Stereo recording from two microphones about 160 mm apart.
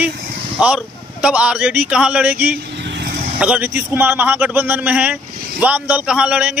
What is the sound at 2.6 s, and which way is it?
Vehicle, 90° right.